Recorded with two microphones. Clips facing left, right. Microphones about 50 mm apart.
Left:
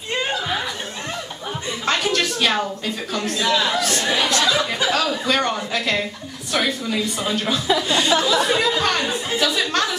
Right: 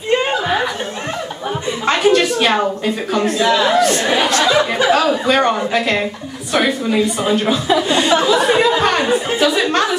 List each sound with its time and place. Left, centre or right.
0.2 s chuckle: right
1.9 s a sound: right
3.3 s a woman's voice: right